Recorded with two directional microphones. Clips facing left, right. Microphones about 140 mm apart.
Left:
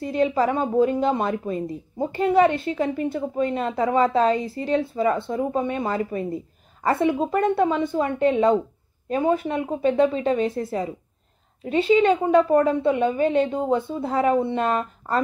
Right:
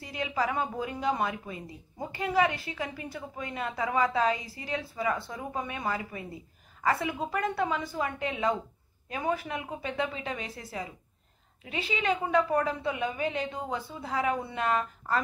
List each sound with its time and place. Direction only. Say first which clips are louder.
0.3 s a woman's voice: left 8 dB; 30° left (ahead or behind)
1.3 s speech: left 13 dB; 45° left (ahead or behind)
2.0 s speech: left 9 dB; 25° left (ahead or behind)
11.6 s a woman's voice: left 15 dB; 40° left (ahead or behind)
12.0 s speech: left 9 dB; 25° left (ahead or behind)